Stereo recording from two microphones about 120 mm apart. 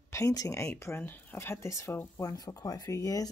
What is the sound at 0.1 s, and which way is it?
Speech, 30° left (ahead or behind).